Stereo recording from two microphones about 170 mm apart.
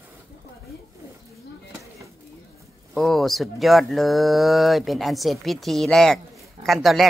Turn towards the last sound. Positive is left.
turn(degrees=0)  # may be behind; listen again after turning